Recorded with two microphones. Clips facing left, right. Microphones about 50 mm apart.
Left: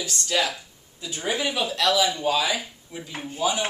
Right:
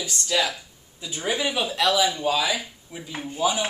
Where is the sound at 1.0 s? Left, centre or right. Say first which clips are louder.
Right 1 dB; right.